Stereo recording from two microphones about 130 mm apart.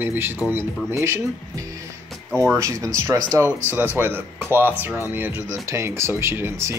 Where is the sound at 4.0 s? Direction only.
15° right (ahead or behind).